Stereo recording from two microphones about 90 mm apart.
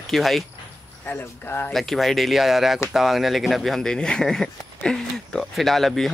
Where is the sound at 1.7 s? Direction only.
Centre (ahead or behind).